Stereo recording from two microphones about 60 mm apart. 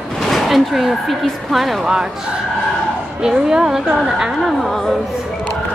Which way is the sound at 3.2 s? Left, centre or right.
Centre.